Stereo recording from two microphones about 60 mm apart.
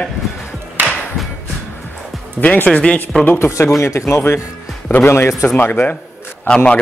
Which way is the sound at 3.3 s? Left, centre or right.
Left.